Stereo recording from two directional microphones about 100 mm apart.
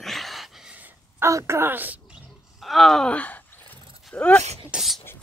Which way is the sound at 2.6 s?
Centre (ahead or behind).